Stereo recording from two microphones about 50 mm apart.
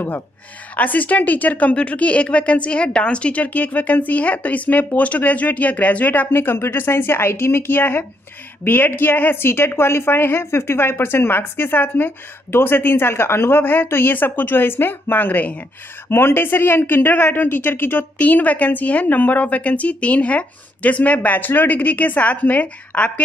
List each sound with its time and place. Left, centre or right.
0.7 s a woman's voice: left
6.3 s a woman's voice: left
16.1 s a woman's voice: left
18.1 s a woman's voice: left